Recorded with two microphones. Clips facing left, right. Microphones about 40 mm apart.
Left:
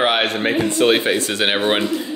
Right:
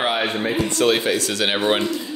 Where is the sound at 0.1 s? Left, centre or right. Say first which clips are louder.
Left 3 dB; left.